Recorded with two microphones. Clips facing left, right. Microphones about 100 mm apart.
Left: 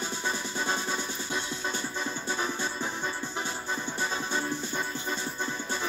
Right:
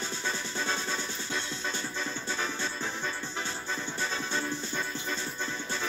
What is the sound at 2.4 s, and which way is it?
Music, 15° left (ahead or behind).